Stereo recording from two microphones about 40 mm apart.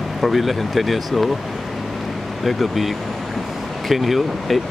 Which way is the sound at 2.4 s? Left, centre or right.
Centre.